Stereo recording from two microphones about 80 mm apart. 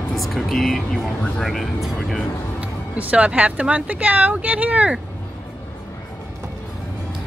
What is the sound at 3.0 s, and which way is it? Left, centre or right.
Speech, centre.